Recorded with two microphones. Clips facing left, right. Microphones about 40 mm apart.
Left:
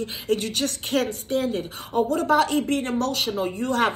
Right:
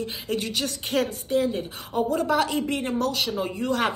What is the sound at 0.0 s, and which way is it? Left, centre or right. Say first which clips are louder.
A woman's voice: left 3 dB; left.